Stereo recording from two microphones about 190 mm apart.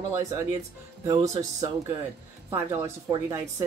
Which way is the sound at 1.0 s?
20° right (ahead or behind).